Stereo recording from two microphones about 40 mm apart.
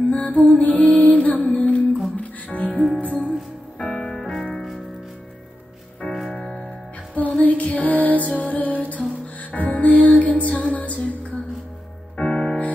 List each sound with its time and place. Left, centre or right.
0.1 s music: left
3.7 s music: left
6.0 s music: centre
7.4 s music: left
12.2 s music: left